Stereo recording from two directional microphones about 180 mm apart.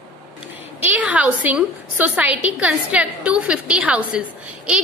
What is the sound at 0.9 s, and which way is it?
A woman's voice, 10° right (ahead or behind).